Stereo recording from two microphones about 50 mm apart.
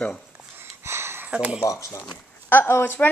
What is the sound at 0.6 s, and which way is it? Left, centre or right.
Sniff, right.